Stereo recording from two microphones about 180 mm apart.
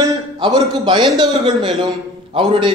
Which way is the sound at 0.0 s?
25° right (ahead or behind).